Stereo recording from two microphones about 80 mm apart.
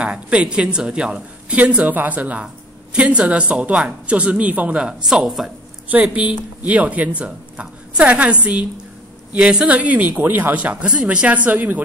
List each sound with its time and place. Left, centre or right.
0.0 s speech: centre
5.9 s a woman's voice: centre